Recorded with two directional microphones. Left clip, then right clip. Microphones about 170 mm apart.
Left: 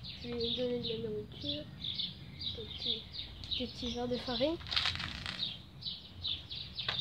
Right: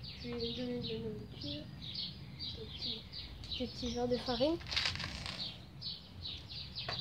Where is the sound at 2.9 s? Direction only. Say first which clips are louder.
Left 6 dB; 40° left (ahead or behind).